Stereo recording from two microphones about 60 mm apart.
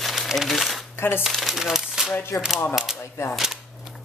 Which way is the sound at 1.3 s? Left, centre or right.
Centre.